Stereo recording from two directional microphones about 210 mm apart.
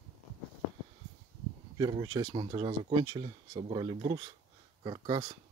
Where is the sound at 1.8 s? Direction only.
20° right (ahead or behind).